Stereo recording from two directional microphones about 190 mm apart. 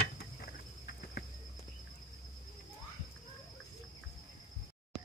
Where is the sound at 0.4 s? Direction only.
55° left (ahead or behind).